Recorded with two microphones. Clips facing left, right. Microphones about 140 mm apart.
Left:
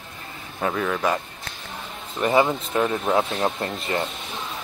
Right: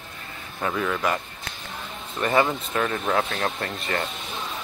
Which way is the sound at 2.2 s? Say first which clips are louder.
Left 2 dB; 15° left (ahead or behind).